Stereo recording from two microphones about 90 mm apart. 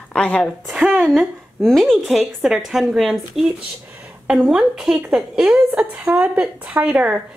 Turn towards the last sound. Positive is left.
turn(degrees=-15)  # may be behind; listen again after turning